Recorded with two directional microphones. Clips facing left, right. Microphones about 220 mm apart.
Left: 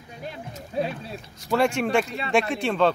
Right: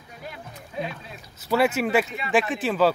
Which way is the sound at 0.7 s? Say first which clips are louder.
Left 5 dB; 35° left (ahead or behind).